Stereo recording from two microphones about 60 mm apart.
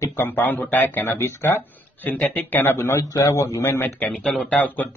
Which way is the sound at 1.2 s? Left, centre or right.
Left.